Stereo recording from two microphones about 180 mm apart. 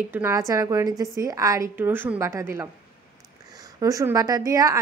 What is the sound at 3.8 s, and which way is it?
Speech, 15° right (ahead or behind).